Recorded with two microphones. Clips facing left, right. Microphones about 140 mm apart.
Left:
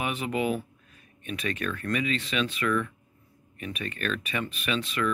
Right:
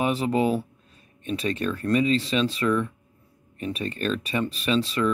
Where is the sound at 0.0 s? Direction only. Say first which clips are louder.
Right 6 dB; 35° right (ahead or behind).